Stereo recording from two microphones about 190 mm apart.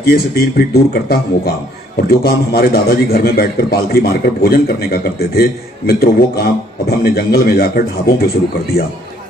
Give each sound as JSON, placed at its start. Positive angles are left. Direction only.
{"t": 0.0, "sound": "a man's voice", "side_deg": 55}